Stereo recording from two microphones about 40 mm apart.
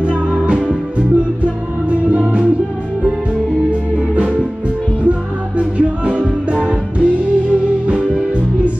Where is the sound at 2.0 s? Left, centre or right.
Right.